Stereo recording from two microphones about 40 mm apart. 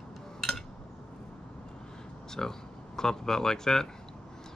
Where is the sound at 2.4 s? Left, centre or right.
Centre.